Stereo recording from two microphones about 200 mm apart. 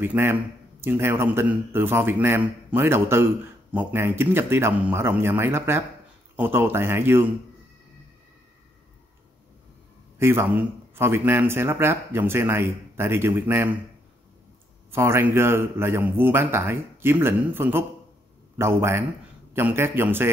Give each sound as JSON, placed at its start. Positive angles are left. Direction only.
{"t": 0.0, "sound": "a man's voice", "side_deg": -10}
{"t": 10.1, "sound": "a man's voice", "side_deg": -10}
{"t": 14.9, "sound": "a man's voice", "side_deg": -10}